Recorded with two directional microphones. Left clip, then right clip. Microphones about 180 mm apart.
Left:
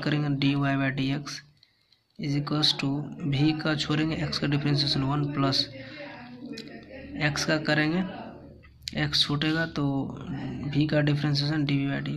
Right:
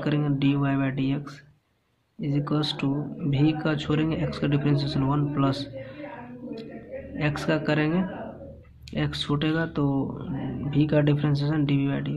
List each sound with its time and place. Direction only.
0.0 s speech: 5° left (ahead or behind)
7.2 s speech: centre (ahead or behind)